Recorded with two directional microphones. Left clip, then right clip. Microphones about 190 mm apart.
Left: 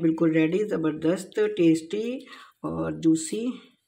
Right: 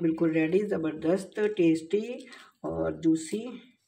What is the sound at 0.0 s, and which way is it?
Speech, 55° left (ahead or behind).